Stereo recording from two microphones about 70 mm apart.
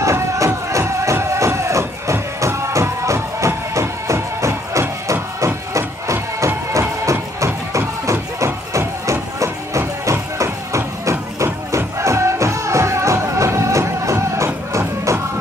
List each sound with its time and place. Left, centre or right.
0.0 s music: right